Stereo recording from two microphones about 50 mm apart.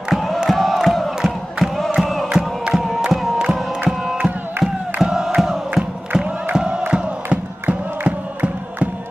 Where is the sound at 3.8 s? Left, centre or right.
Centre.